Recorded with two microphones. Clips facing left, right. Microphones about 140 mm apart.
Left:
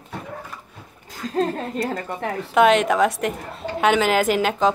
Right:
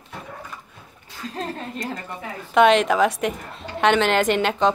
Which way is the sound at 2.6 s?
Centre (ahead or behind).